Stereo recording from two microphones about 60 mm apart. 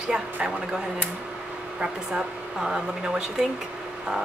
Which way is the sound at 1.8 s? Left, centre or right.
Centre.